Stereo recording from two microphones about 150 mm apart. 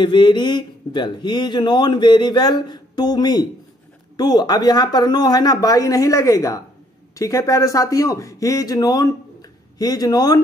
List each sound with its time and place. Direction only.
0.0 s speech: 30° left (ahead or behind)